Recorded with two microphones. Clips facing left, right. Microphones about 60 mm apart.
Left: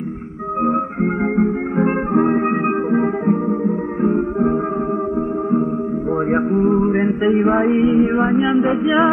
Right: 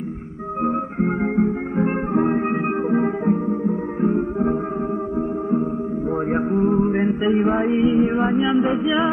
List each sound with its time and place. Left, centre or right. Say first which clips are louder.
0.7 s music: left 2 dB; left
6.3 s music: left 3 dB; left